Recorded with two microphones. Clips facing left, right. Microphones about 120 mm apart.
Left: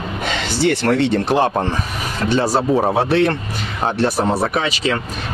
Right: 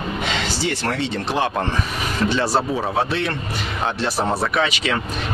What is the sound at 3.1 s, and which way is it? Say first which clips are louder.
Speech: left 7 dB; 55° left (ahead or behind).